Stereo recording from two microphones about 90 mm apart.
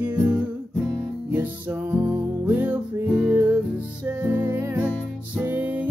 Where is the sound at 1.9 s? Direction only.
15° right (ahead or behind).